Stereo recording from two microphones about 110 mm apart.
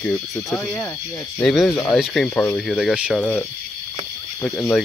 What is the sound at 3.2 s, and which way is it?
Speech, 10° left (ahead or behind).